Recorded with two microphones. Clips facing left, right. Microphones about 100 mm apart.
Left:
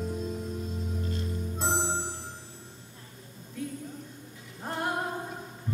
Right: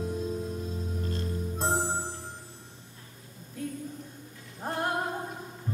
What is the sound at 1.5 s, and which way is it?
Music, centre (ahead or behind).